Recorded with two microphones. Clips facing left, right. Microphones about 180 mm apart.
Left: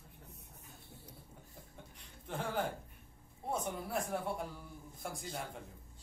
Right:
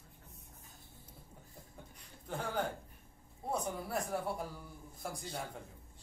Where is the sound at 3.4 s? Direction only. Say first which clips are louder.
Right 1 dB; centre (ahead or behind).